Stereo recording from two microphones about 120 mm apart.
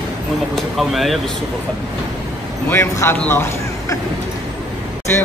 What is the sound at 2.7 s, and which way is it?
Speech, 20° left (ahead or behind).